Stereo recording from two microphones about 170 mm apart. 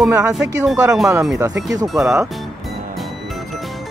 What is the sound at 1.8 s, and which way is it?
Speech, 20° right (ahead or behind).